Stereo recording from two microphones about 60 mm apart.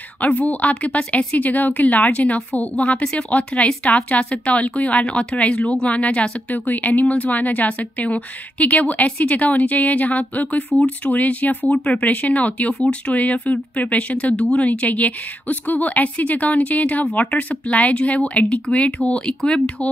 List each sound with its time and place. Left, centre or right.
0.2 s a woman's voice: left